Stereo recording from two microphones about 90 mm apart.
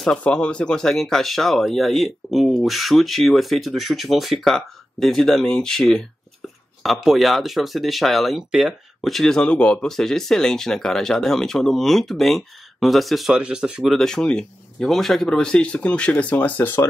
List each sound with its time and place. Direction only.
0.0 s speech: 10° left (ahead or behind); by 13.9 s 10° right (ahead or behind)
13.9 s speech: 5° left (ahead or behind); by 16.8 s 25° left (ahead or behind)